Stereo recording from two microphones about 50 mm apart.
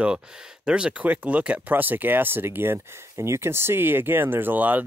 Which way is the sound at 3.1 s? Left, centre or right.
Right.